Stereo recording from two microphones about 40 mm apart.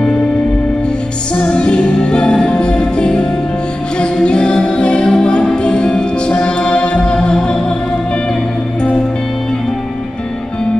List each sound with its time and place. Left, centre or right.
1.3 s music: left